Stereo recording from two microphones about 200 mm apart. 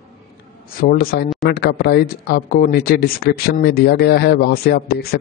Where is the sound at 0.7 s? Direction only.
50° left (ahead or behind).